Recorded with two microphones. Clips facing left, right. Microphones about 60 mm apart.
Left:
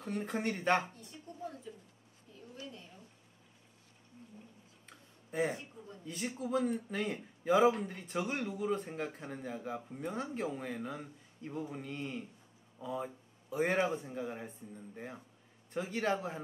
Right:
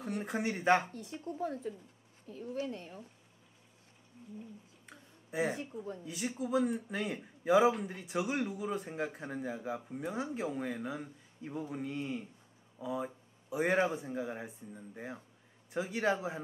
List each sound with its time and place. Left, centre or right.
0.0 s speech: centre
0.9 s a woman's voice: right
2.3 s a woman's voice: right
2.6 s speech: right
4.8 s a sound: centre
6.0 s speech: centre